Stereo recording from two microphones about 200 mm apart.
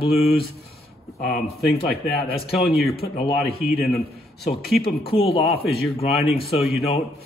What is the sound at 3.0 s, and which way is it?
Speech, 45° left (ahead or behind).